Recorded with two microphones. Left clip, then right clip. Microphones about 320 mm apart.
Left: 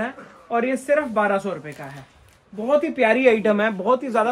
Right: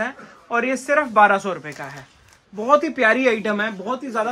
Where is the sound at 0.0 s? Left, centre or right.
Centre.